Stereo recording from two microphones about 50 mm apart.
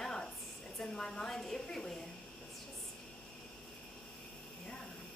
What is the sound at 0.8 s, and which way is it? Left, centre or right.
A woman's voice, centre.